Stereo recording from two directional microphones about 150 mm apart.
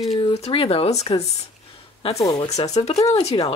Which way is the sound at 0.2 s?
40° left (ahead or behind).